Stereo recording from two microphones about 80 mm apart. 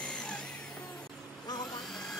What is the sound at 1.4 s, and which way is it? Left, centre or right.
Tools, left.